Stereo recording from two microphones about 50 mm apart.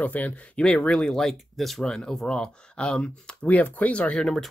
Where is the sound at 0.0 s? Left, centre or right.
Left.